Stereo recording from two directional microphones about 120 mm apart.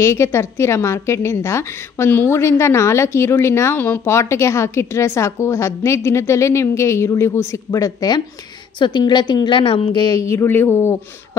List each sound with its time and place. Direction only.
0.0 s a woman's voice: 25° left (ahead or behind)